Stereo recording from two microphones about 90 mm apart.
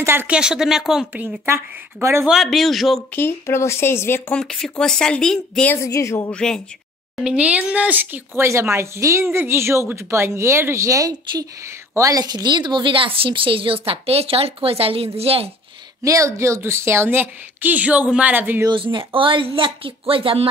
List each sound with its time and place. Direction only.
0.0 s a woman's voice: 25° right (ahead or behind)
0.3 s speech: 10° right (ahead or behind)
1.4 s a woman's voice: 30° right (ahead or behind)
2.2 s speech: centre (ahead or behind)
3.2 s speech: 25° left (ahead or behind)
4.3 s speech: 5° left (ahead or behind)
5.8 s speech: 35° left (ahead or behind)
6.3 s speech: 5° left (ahead or behind)
7.2 s speech: 15° right (ahead or behind)
8.5 s a woman's voice: 30° right (ahead or behind); by 15.5 s 90° right
16.0 s a woman's voice: 35° right (ahead or behind); by 18.6 s 20° right (ahead or behind)
18.7 s speech: 65° right (ahead or behind); by 20.4 s 85° right